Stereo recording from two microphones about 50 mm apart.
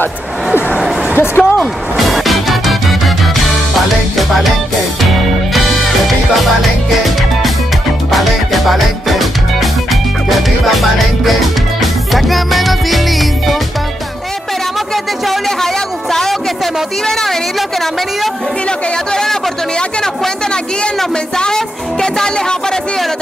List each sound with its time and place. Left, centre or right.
1.1 s music: left
2.0 s music: centre
4.2 s music: centre
8.1 s music: centre
15.2 s a sound: centre
21.4 s music: centre